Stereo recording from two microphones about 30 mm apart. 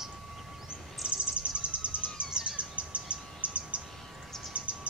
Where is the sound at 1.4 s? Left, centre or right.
Right.